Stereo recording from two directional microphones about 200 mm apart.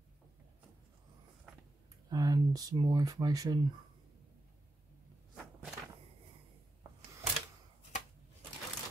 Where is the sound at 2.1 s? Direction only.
20° right (ahead or behind).